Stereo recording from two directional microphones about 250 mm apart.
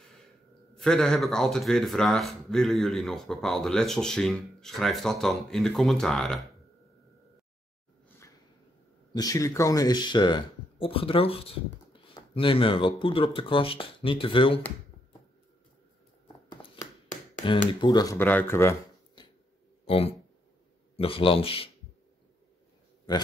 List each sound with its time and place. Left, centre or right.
0.7 s speech: centre
9.1 s speech: centre
16.6 s a sound: centre
17.9 s speech: centre
19.9 s speech: left
23.1 s speech: centre